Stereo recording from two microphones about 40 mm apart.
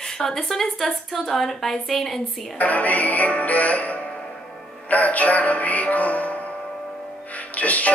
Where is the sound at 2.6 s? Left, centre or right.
Left.